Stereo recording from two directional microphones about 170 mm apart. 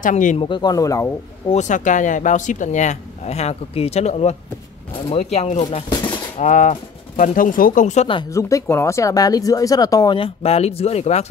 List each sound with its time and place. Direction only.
0.0 s speech: 50° left (ahead or behind)
0.4 s speech: 25° left (ahead or behind)
1.5 s speech: 45° left (ahead or behind)
8.2 s speech: 20° left (ahead or behind); by 11.2 s 40° left (ahead or behind)